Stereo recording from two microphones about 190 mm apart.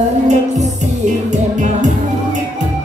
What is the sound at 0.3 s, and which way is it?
Music, 40° right (ahead or behind).